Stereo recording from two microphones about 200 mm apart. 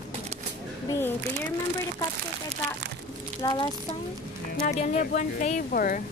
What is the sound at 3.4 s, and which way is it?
Speech, 20° left (ahead or behind).